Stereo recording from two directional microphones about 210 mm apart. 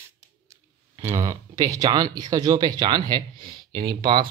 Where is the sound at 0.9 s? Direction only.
15° right (ahead or behind).